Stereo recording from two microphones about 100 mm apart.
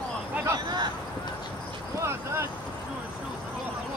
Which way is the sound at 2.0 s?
25° right (ahead or behind).